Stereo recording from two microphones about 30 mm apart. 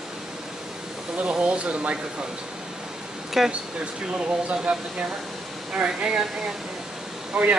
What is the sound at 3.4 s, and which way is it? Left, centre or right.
Speech, centre.